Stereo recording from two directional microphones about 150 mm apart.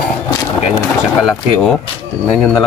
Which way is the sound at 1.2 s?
Centre (ahead or behind).